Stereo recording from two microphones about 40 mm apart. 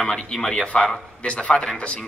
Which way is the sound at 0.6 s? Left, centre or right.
Left.